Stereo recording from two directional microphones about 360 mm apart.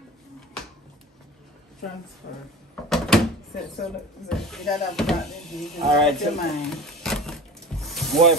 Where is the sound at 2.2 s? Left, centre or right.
Left.